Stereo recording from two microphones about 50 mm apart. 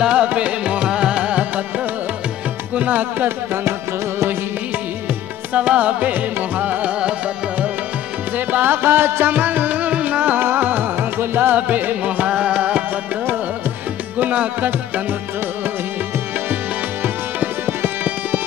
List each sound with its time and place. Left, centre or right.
0.0 s music: right
2.7 s music: right
5.5 s music: right
8.4 s music: right
10.4 s music: right
11.5 s music: right
12.3 s music: right
14.2 s music: right
17.0 s music: right